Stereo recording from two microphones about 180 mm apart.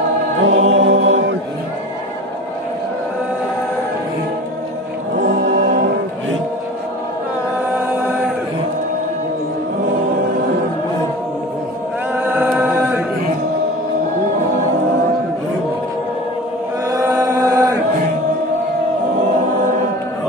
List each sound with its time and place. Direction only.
0.4 s choir: 90° right
12.3 s a capella: 10° right (ahead or behind)
16.9 s chant: 15° right (ahead or behind)